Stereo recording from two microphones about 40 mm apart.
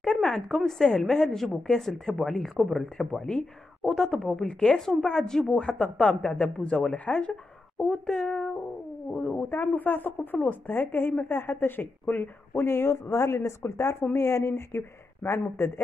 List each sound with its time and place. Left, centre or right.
0.0 s a sound: centre
0.4 s a woman's voice: centre
5.6 s speech: left
9.5 s speech: left